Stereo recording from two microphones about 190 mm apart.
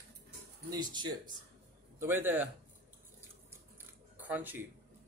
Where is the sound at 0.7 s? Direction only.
20° right (ahead or behind).